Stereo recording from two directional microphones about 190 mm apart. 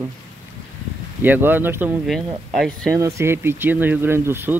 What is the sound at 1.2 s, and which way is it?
Speech, 10° right (ahead or behind).